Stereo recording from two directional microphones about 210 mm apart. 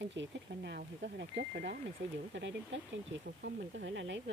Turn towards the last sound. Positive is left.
turn(degrees=-60)  # may be behind; listen again after turning